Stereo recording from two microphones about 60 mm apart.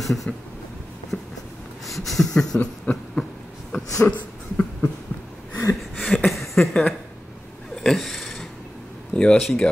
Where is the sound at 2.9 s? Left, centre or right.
Left.